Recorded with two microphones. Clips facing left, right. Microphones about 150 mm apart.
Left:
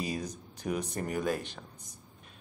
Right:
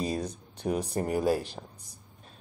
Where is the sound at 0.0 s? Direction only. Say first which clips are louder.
Right 4 dB; 35° right (ahead or behind).